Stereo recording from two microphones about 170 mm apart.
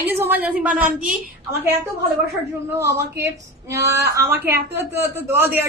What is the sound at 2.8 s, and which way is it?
A woman's voice, 15° right (ahead or behind).